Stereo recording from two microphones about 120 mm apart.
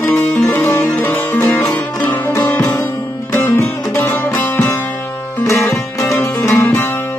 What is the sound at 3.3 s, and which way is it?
Music, 20° left (ahead or behind).